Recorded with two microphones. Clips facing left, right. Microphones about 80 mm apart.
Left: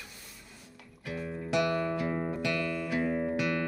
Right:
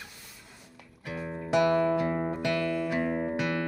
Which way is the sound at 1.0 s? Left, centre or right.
Right.